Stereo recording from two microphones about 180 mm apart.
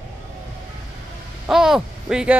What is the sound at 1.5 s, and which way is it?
Speech, 5° right (ahead or behind).